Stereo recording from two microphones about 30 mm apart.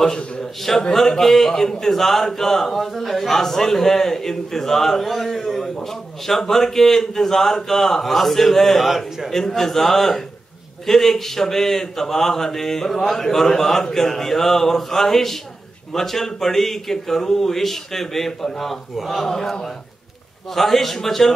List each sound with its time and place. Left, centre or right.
0.0 s a man's voice: centre
5.0 s a man's voice: centre
8.8 s a man's voice: centre
9.5 s a man's voice: centre
19.2 s a man's voice: centre